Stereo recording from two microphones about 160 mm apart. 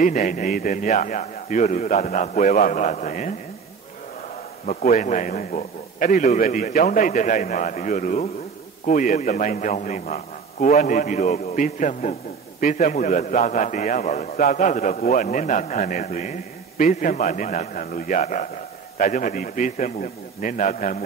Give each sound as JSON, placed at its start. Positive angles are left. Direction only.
{"t": 0.0, "sound": "a man's voice", "side_deg": 55}
{"t": 4.8, "sound": "a man's voice", "side_deg": 50}